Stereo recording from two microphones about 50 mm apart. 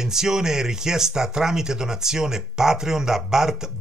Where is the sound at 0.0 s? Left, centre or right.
Centre.